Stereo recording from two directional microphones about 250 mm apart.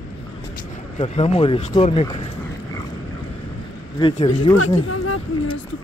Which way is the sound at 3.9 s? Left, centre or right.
Left.